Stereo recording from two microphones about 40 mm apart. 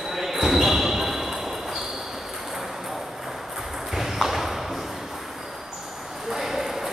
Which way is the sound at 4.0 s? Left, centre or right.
Centre.